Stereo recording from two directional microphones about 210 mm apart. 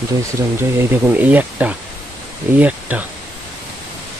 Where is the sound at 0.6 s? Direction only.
10° right (ahead or behind).